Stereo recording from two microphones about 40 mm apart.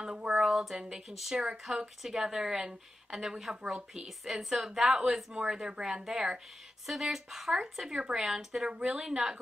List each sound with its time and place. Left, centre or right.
0.0 s a sound: right
1.1 s speech: centre
1.4 s speech: centre
6.9 s speech: centre; by 9.4 s right